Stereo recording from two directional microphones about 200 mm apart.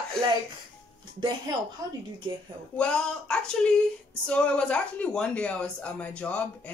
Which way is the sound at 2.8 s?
5° left (ahead or behind).